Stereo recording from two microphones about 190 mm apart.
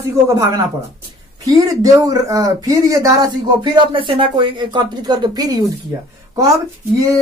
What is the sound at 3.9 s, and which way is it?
Speech, 25° right (ahead or behind).